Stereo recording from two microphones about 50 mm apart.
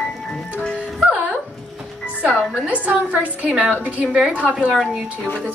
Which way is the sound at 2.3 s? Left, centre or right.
Right.